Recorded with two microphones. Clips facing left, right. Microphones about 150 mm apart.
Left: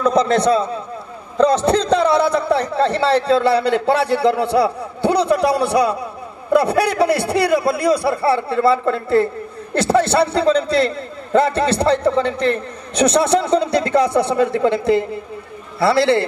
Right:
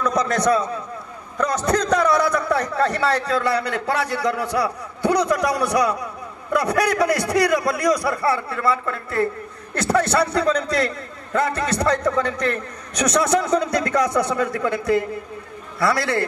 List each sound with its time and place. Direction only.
0.0 s a man's voice: 30° left (ahead or behind)